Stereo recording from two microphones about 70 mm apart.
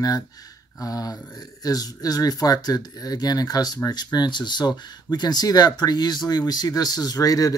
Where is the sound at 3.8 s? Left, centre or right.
Left.